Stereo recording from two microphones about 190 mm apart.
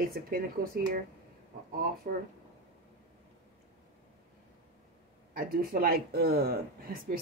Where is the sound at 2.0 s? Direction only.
50° right (ahead or behind).